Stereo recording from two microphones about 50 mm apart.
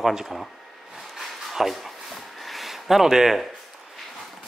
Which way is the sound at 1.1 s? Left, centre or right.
Centre.